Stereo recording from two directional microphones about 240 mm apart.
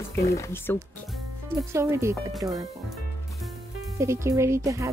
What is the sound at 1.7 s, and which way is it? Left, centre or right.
Speech, centre.